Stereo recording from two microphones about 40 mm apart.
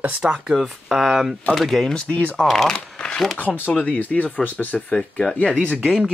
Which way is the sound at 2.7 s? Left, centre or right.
Left.